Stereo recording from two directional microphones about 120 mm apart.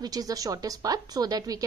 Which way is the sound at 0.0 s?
30° right (ahead or behind).